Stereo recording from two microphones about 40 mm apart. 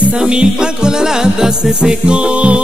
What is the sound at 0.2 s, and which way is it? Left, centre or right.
Music, right.